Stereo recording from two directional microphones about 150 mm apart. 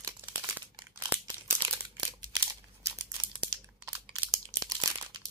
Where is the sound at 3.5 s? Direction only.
25° right (ahead or behind).